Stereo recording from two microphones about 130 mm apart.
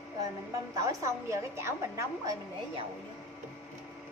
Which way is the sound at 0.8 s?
25° right (ahead or behind).